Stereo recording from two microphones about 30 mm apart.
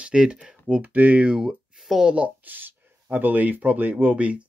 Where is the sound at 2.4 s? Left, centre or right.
Right.